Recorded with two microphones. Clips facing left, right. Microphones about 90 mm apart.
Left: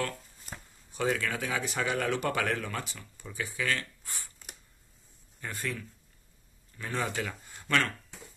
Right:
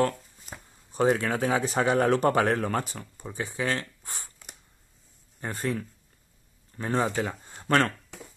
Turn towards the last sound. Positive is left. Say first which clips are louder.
# right 5 dB
turn(degrees=-30)  # may be behind; listen again after turning